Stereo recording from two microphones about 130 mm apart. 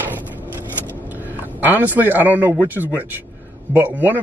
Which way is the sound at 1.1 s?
15° right (ahead or behind).